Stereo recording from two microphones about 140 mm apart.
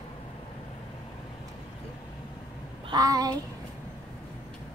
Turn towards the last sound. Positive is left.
turn(degrees=-25)  # may be behind; listen again after turning